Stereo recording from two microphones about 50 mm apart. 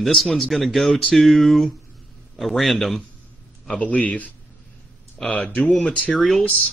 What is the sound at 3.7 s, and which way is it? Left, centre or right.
Speech, left.